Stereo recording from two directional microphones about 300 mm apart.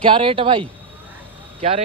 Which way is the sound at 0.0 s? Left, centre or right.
Centre.